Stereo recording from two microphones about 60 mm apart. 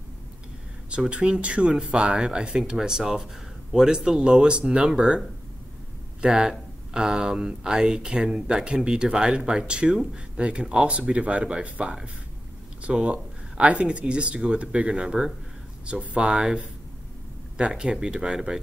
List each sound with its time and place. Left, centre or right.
0.8 s speech: centre
6.2 s speech: centre